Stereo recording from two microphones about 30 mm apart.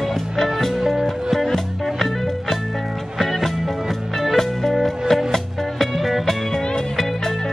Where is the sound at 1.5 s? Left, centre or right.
Centre.